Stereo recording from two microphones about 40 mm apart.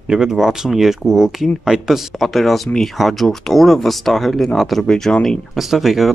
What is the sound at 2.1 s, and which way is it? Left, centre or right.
Speech, centre.